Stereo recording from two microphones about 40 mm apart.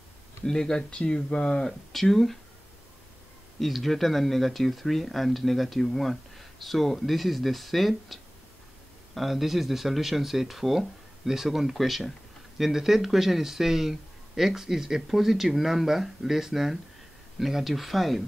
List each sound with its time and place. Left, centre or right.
0.5 s speech: centre
1.9 s speech: centre
3.5 s speech: centre